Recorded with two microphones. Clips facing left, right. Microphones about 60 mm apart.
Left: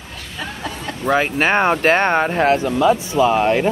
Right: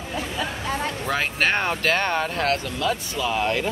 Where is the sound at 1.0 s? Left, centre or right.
Centre.